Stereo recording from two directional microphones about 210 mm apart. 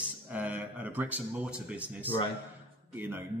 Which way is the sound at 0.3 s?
5° right (ahead or behind).